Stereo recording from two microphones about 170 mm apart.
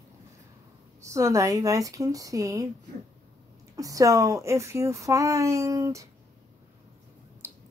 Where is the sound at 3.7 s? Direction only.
20° right (ahead or behind).